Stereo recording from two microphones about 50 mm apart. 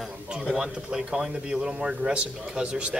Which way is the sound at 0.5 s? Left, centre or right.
Centre.